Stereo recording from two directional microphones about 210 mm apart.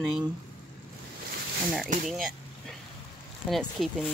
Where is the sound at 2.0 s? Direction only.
Centre (ahead or behind).